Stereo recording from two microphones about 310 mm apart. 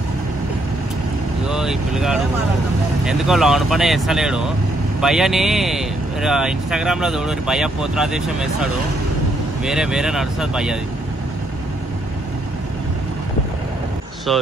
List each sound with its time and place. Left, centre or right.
1.5 s speech: centre
14.3 s speech: centre